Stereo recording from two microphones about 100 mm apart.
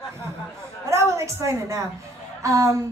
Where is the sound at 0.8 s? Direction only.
30° right (ahead or behind).